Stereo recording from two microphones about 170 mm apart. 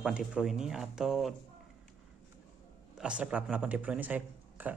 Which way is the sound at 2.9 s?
5° right (ahead or behind).